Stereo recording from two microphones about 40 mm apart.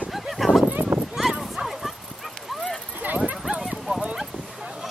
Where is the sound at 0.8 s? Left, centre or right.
Right.